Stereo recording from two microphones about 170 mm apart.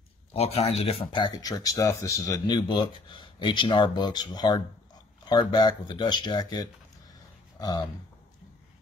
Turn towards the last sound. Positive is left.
turn(degrees=20)  # may be behind; listen again after turning